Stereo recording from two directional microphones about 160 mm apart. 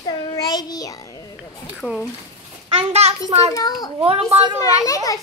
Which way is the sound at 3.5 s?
25° left (ahead or behind).